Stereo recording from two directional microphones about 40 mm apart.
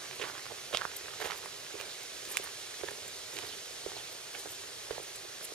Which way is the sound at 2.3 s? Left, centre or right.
Left.